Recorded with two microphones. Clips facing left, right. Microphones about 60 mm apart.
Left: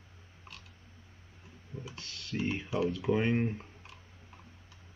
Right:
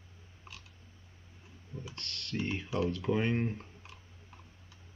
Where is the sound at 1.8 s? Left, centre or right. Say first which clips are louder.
Right 1 dB; centre.